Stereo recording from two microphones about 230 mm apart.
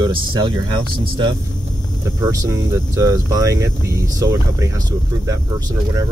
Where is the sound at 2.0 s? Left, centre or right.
Centre.